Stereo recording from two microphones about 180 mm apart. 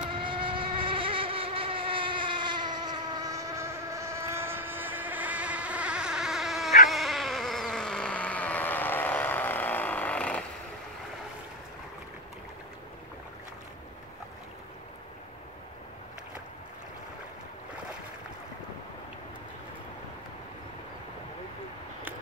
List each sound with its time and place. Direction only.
0.2 s mosquito: 30° right (ahead or behind); by 6.7 s centre (ahead or behind)
6.9 s insect: centre (ahead or behind)